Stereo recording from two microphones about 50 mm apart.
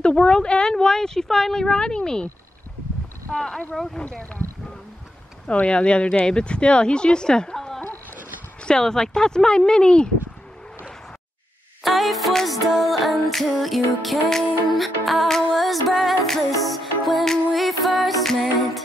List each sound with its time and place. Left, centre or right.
0.0 s speech: centre
3.3 s speech: centre
3.7 s music: centre
4.0 s speech: left
5.5 s speech: left
11.8 s music: centre